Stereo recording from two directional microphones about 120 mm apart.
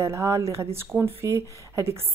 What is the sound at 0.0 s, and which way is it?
A woman's voice, 25° right (ahead or behind).